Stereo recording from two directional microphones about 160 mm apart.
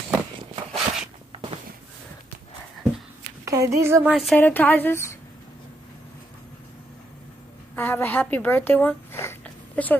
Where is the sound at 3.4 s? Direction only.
20° right (ahead or behind).